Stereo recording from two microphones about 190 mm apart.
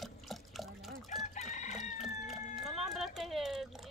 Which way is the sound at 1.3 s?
40° left (ahead or behind).